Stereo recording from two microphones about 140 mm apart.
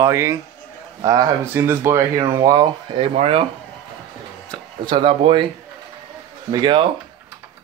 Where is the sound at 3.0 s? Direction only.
45° right (ahead or behind).